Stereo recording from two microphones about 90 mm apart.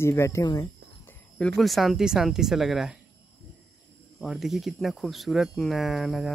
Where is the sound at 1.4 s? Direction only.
Centre (ahead or behind).